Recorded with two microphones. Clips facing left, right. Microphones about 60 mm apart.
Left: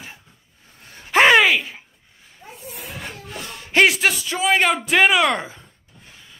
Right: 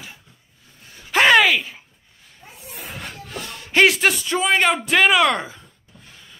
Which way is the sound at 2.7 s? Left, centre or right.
Centre.